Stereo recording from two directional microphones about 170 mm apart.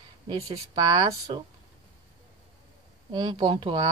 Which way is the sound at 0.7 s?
20° right (ahead or behind).